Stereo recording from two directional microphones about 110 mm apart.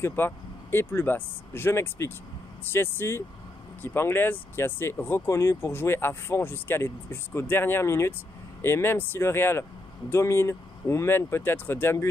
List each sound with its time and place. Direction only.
0.0 s speech: 20° left (ahead or behind)